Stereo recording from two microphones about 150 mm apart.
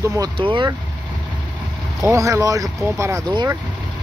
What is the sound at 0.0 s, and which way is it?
Speech, 20° right (ahead or behind).